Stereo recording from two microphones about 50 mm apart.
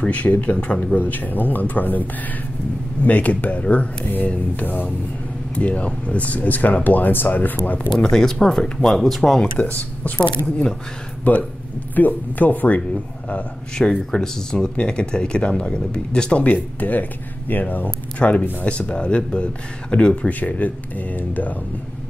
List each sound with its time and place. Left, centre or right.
0.1 s speech: left
8.0 s speech: centre
9.6 s speech: left
13.7 s speech: centre
16.4 s speech: left
18.8 s speech: left
20.2 s speech: left